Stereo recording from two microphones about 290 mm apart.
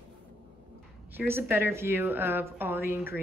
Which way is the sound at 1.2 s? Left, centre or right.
Centre.